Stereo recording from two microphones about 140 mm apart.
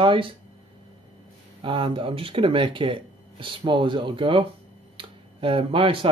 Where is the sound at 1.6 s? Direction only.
40° right (ahead or behind).